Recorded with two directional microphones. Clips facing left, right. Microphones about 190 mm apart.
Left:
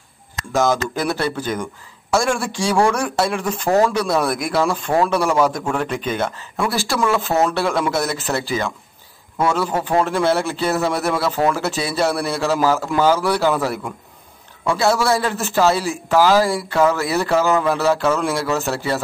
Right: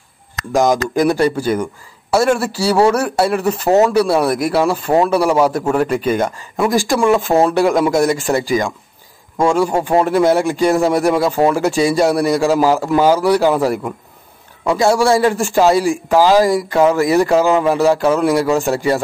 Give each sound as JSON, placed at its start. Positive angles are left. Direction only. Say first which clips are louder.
{"t": 0.5, "sound": "a man's voice", "louder": "right 4 dB", "side_deg": -15}